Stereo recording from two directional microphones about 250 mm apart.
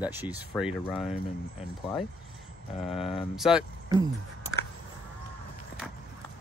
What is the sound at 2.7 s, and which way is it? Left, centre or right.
Speech, left.